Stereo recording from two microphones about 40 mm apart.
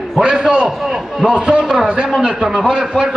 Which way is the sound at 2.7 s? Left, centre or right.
Right.